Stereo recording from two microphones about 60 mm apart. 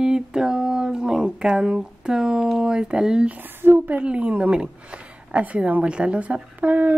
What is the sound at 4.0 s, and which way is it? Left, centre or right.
A woman's voice, centre.